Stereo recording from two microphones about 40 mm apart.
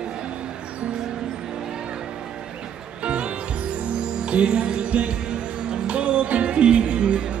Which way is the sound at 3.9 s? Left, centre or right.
Right.